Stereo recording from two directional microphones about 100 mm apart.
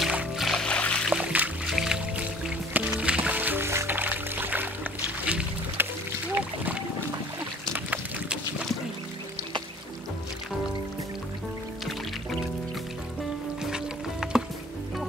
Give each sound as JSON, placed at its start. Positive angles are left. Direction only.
{"t": 0.4, "sound": "music", "side_deg": 5}
{"t": 1.1, "sound": "music", "side_deg": -15}
{"t": 1.7, "sound": "music", "side_deg": -5}
{"t": 7.7, "sound": "a sound", "side_deg": -15}
{"t": 13.6, "sound": "music", "side_deg": -5}